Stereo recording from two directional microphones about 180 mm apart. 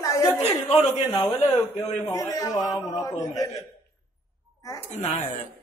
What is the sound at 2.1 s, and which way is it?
A man's voice, 20° left (ahead or behind).